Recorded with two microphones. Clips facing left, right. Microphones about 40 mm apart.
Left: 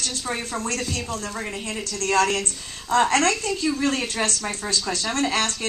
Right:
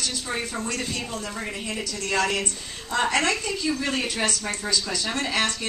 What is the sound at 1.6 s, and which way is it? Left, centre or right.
A woman's voice, centre.